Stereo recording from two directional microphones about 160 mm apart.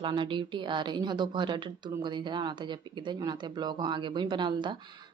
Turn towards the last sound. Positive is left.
turn(degrees=-30)  # may be behind; listen again after turning